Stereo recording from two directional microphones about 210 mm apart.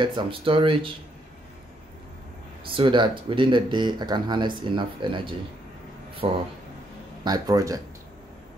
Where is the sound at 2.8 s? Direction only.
25° right (ahead or behind).